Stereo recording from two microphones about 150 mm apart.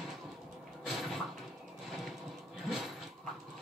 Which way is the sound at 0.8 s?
Centre (ahead or behind).